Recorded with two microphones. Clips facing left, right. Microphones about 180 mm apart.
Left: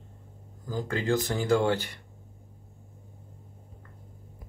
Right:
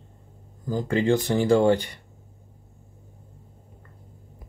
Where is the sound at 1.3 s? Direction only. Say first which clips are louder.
Right 7 dB; 15° right (ahead or behind).